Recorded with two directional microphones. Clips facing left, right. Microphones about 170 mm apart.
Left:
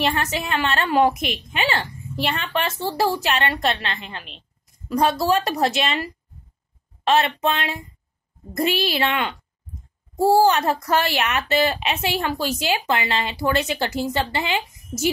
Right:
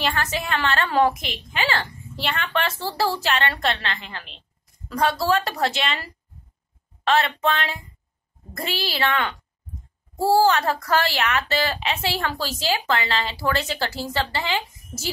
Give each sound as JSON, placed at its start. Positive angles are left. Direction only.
{"t": 0.0, "sound": "a woman's voice", "side_deg": 20}